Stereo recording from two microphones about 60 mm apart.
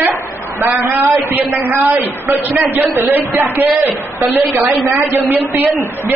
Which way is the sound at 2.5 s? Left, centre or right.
Right.